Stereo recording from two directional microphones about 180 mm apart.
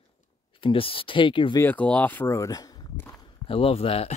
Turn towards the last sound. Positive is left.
turn(degrees=35)  # may be behind; listen again after turning